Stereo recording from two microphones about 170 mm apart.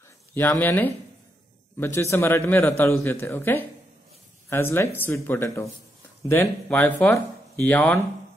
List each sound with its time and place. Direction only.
0.3 s speech: 10° left (ahead or behind)